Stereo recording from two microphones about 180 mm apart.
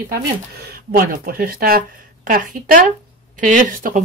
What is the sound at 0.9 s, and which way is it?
Speech, 55° right (ahead or behind).